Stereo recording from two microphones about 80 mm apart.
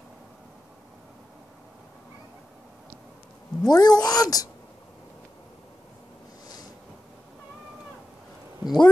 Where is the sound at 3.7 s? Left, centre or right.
Left.